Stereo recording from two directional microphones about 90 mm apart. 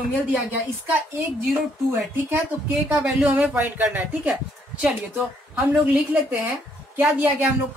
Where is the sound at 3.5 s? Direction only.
20° right (ahead or behind).